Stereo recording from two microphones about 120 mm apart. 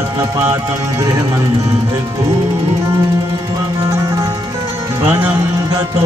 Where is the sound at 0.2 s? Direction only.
25° right (ahead or behind).